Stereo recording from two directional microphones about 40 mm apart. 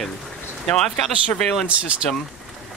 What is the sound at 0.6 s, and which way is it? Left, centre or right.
Speech, centre.